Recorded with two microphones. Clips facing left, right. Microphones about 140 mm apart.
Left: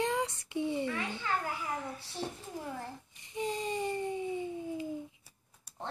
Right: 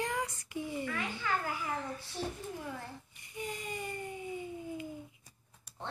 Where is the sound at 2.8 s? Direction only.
25° left (ahead or behind).